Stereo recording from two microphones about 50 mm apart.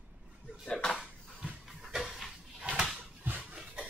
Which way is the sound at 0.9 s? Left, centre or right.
Right.